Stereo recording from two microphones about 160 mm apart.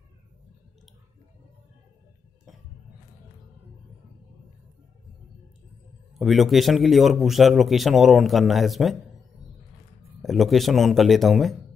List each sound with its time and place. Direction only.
6.1 s speech: centre (ahead or behind)
10.2 s speech: centre (ahead or behind)